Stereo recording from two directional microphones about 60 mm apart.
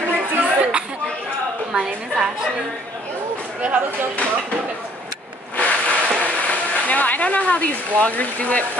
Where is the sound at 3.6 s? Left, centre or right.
Right.